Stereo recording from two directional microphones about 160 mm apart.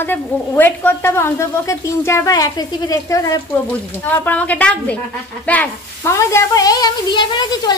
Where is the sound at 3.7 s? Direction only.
10° left (ahead or behind).